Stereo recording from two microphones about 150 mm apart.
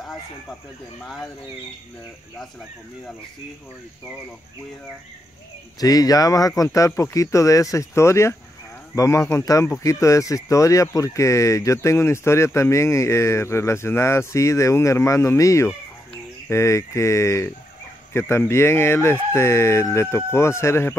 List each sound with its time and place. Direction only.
5.8 s speech: 25° left (ahead or behind)